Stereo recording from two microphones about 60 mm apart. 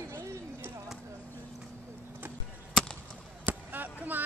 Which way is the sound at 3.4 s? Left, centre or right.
Right.